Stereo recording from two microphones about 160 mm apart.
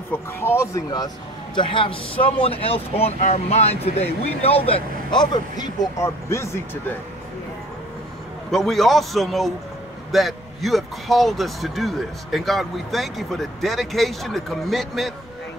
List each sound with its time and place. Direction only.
0.1 s a man's voice: 15° left (ahead or behind)
8.5 s a man's voice: centre (ahead or behind)